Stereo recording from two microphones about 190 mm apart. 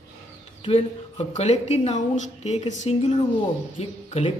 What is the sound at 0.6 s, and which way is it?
A woman's voice, 35° left (ahead or behind).